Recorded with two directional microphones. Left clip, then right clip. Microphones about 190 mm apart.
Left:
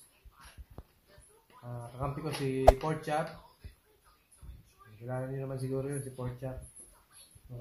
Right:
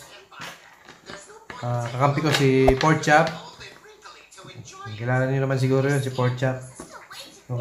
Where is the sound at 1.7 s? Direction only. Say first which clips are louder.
Right 17 dB; 5° right (ahead or behind).